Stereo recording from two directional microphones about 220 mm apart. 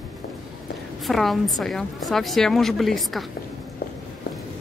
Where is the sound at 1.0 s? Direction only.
Centre (ahead or behind).